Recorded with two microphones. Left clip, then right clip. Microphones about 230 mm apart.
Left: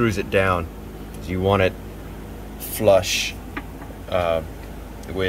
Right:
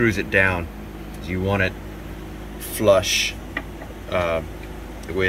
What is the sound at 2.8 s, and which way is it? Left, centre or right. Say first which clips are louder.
Speech: even; centre.